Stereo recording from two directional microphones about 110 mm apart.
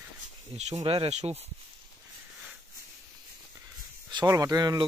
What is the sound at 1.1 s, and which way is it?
Speech, 80° right.